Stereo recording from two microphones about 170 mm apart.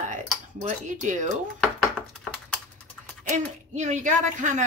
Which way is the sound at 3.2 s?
45° right (ahead or behind).